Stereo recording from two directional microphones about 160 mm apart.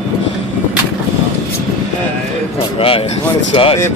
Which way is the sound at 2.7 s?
35° left (ahead or behind).